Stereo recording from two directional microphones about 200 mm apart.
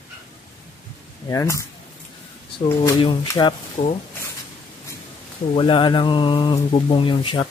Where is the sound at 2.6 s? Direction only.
25° left (ahead or behind).